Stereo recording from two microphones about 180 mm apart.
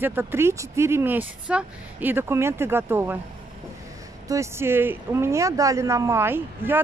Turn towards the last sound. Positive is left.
turn(degrees=-10)  # may be behind; listen again after turning